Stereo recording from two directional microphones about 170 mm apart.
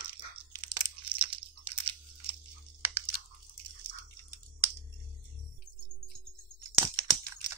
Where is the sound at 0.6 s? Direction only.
15° right (ahead or behind).